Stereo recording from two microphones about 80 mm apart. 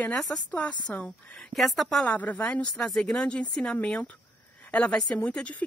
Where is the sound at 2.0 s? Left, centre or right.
Centre.